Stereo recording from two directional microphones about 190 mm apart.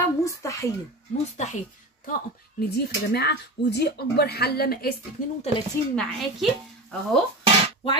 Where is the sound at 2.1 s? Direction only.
55° left (ahead or behind).